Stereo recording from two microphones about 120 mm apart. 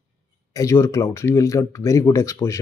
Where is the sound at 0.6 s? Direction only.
25° left (ahead or behind).